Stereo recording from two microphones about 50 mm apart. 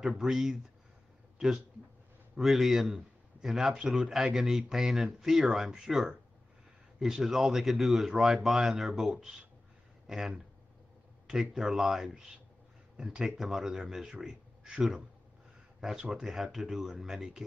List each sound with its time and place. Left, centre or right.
0.1 s speech: centre
2.4 s speech: centre